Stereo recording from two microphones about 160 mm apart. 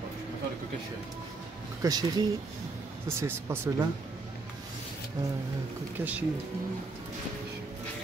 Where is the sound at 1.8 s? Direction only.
25° right (ahead or behind).